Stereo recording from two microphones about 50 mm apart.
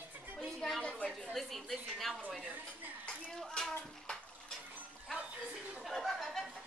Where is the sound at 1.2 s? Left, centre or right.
Centre.